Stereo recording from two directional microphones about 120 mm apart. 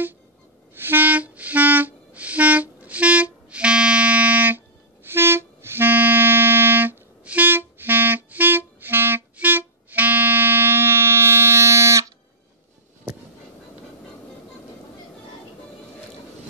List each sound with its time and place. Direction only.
0.7 s music: 15° right (ahead or behind)
5.0 s clarinet: 20° right (ahead or behind)